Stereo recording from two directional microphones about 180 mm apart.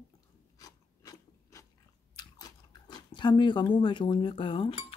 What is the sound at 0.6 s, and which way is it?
Filing, 20° left (ahead or behind).